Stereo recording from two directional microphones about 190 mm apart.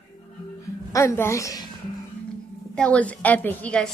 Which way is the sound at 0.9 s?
15° left (ahead or behind).